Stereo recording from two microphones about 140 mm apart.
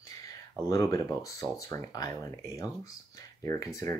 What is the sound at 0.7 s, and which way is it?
Speech, 20° left (ahead or behind).